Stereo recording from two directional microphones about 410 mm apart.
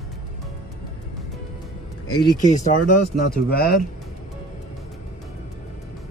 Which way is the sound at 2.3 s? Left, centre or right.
Centre.